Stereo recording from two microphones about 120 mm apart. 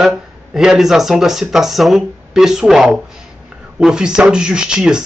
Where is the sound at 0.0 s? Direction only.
5° right (ahead or behind).